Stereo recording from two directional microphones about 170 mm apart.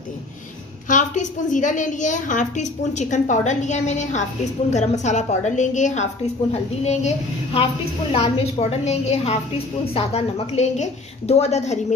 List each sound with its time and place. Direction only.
0.8 s a woman's voice: 45° left (ahead or behind)